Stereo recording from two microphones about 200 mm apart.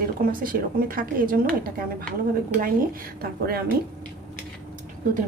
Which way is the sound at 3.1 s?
50° right (ahead or behind).